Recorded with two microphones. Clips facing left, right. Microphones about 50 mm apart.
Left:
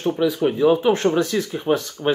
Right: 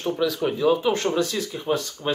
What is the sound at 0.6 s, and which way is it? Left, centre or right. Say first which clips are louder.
A man's voice: left 4 dB; left.